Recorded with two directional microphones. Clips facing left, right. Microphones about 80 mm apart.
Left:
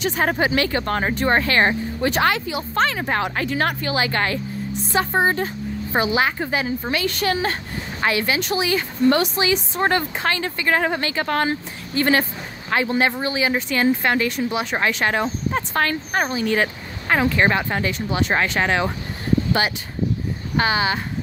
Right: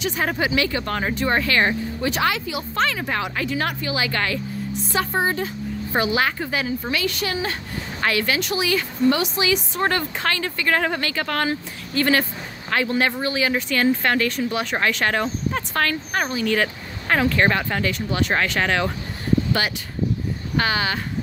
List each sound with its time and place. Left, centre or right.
0.0 s speech: left
5.9 s a woman's voice: left
6.9 s speech: left
8.0 s a woman's voice: left
17.1 s a woman's voice: centre
20.5 s a woman's voice: left